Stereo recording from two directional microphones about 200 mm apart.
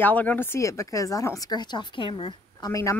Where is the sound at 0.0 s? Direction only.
10° left (ahead or behind).